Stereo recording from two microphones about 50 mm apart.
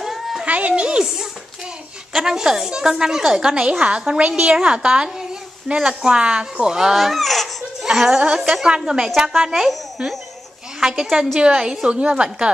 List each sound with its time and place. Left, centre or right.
0.0 s children playing: centre
0.5 s a woman's voice: right
1.0 s a woman's voice: centre
8.6 s a woman's voice: centre